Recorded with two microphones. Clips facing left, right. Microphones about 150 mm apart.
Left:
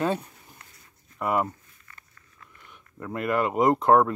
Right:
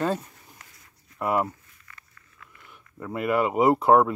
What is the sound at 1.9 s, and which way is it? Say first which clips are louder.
Walk: right 1 dB; 25° left (ahead or behind).